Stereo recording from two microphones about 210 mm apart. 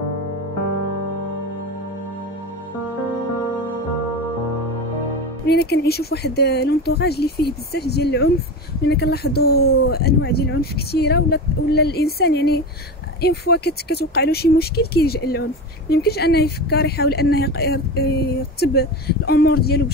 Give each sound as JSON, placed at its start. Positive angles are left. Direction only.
{"t": 5.5, "sound": "speech", "side_deg": 50}